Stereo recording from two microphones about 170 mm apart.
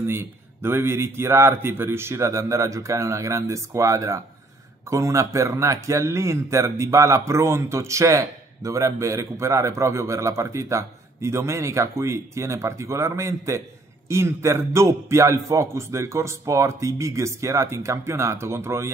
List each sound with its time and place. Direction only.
0.0 s a man's voice: 15° right (ahead or behind)